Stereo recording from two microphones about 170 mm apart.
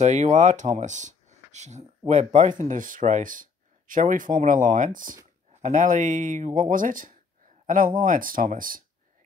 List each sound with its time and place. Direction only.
0.0 s speech: 45° right (ahead or behind)